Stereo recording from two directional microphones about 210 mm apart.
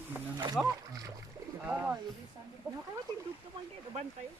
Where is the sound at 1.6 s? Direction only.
10° right (ahead or behind).